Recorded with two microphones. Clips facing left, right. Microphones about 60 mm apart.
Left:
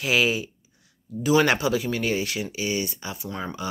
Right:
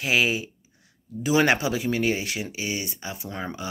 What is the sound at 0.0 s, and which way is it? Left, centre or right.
Speech, centre.